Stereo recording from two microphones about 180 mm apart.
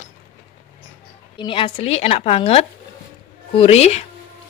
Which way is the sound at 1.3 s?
30° left (ahead or behind).